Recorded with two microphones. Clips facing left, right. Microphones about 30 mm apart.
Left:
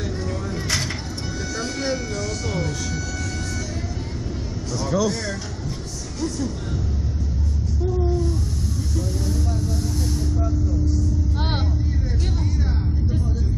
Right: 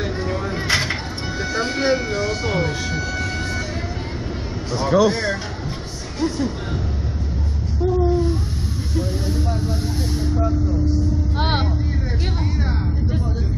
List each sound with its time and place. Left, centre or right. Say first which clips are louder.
0.0 s a sound: right 4 dB; right
1.5 s vehicle: right 7 dB; right
4.7 s speech: right 6 dB; right
6.2 s music: right 4 dB; right
7.8 s a sound: right 6 dB; right
10.1 s vehicle: right 4 dB; right